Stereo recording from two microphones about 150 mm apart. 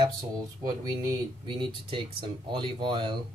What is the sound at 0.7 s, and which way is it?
Speech, 30° right (ahead or behind).